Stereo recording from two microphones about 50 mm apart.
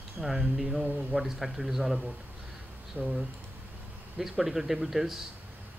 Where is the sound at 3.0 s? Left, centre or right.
Right.